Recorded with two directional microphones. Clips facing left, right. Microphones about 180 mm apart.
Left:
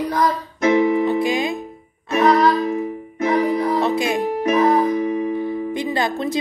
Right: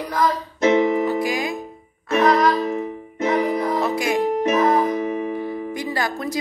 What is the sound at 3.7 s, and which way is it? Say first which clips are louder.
Music: left 2 dB; 20° left (ahead or behind).